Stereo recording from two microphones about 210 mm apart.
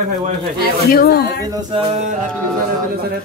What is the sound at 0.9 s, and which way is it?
Speech, 45° left (ahead or behind).